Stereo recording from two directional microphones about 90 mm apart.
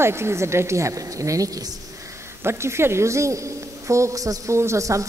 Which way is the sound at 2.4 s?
30° right (ahead or behind).